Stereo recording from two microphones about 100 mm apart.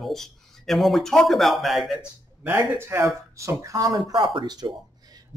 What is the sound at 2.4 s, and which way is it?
Speech, 15° right (ahead or behind).